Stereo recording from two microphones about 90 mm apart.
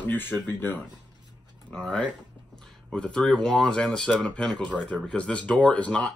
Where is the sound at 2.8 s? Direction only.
10° left (ahead or behind).